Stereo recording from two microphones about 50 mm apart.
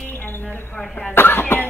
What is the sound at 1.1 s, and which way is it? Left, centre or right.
Cough, left.